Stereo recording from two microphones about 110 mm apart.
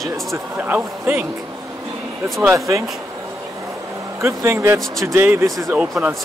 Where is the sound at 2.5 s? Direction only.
30° right (ahead or behind).